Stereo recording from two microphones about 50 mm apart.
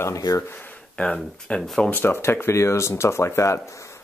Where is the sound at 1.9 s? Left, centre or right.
Left.